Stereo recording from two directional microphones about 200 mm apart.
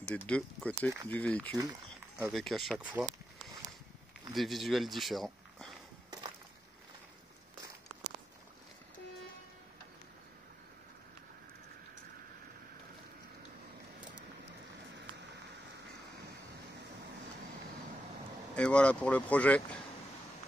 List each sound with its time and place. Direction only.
0.0 s speech: 5° left (ahead or behind)
1.6 s a sound: 15° right (ahead or behind)
2.2 s speech: centre (ahead or behind)
4.3 s speech: centre (ahead or behind)
18.5 s speech: 5° left (ahead or behind)